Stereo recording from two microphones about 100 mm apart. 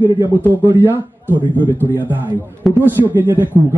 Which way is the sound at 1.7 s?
20° right (ahead or behind).